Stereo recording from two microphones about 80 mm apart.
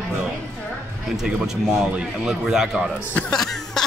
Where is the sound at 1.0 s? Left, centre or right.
Centre.